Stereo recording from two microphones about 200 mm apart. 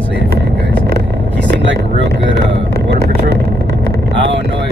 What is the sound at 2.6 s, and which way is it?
Vehicle, 55° right (ahead or behind).